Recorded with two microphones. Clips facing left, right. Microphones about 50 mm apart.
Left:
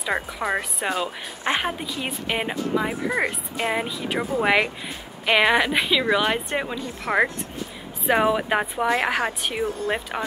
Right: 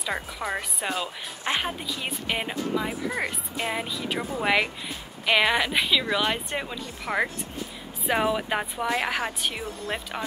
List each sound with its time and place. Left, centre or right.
0.0 s speech: centre